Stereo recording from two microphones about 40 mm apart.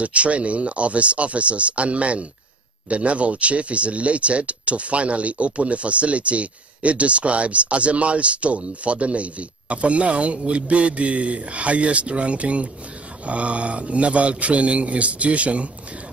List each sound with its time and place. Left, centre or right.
0.0 s speech: right